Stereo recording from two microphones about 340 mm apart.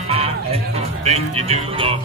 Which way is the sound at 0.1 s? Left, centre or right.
Centre.